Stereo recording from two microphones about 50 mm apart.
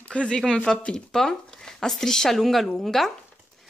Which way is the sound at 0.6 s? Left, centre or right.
Left.